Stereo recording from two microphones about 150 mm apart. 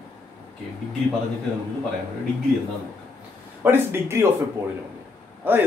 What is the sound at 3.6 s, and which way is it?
Speech, 15° right (ahead or behind).